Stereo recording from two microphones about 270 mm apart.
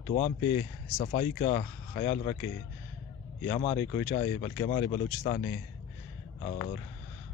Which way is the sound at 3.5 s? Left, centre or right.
Left.